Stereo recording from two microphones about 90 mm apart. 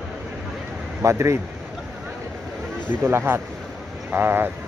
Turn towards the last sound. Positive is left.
turn(degrees=-25)  # may be behind; listen again after turning